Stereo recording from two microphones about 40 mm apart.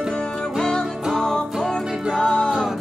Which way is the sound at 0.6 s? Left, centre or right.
Centre.